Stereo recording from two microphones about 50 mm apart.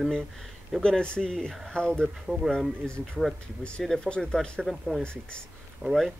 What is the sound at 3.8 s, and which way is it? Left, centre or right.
Speech, centre.